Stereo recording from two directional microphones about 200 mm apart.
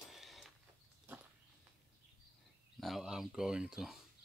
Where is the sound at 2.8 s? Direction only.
Centre (ahead or behind).